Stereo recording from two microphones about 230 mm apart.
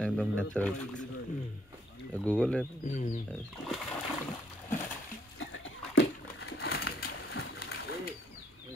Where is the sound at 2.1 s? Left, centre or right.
Centre.